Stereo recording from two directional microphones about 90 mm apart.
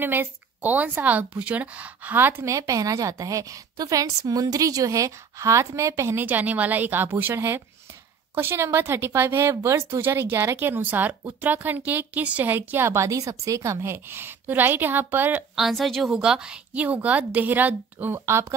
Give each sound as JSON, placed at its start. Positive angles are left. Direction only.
{"t": 0.0, "sound": "a woman's voice", "side_deg": -20}
{"t": 2.5, "sound": "a woman's voice", "side_deg": -40}
{"t": 6.2, "sound": "a woman's voice", "side_deg": -20}
{"t": 15.5, "sound": "a woman's voice", "side_deg": 0}